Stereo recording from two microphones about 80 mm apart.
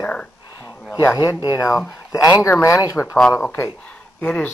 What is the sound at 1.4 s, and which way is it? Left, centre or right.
Speech, left.